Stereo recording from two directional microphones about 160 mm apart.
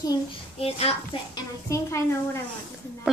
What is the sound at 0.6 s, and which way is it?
Speech, 40° left (ahead or behind).